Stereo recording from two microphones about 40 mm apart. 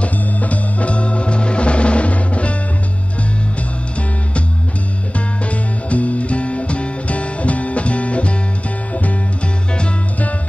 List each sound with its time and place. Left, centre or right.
0.0 s music: left
5.1 s music: left